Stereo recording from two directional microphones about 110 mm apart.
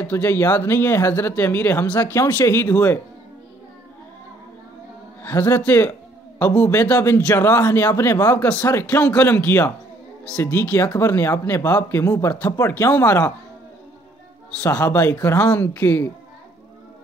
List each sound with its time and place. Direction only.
0.0 s speech: 20° left (ahead or behind)
5.2 s a man's voice: 20° left (ahead or behind)
5.6 s a sound: 15° left (ahead or behind)
6.7 s speech: 25° left (ahead or behind)
8.4 s speech: 10° left (ahead or behind)
10.4 s speech: 20° left (ahead or behind)
14.6 s speech: 20° left (ahead or behind)